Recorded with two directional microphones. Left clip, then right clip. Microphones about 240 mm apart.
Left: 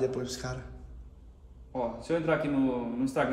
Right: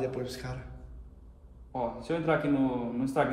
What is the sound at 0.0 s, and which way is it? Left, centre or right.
Speech, centre.